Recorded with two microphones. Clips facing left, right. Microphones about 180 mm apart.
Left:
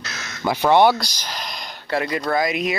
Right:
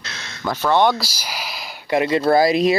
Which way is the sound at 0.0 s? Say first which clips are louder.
Left 2 dB; 30° right (ahead or behind).